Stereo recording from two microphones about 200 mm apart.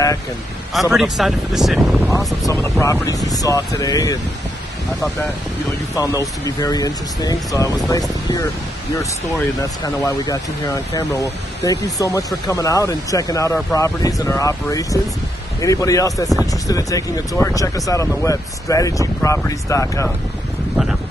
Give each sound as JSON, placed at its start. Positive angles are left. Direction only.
{"t": 0.7, "sound": "speech", "side_deg": 0}
{"t": 2.4, "sound": "speech", "side_deg": 15}
{"t": 5.9, "sound": "speech", "side_deg": 15}
{"t": 9.6, "sound": "speech", "side_deg": 15}
{"t": 11.6, "sound": "speech", "side_deg": 15}